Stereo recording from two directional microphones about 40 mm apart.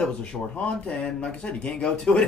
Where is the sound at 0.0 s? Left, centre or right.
Left.